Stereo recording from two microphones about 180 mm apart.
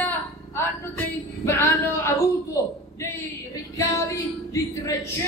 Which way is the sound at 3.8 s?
20° left (ahead or behind).